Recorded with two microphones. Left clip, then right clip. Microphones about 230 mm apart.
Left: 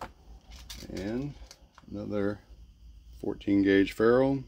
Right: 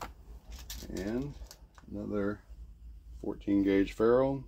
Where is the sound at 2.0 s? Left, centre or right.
Left.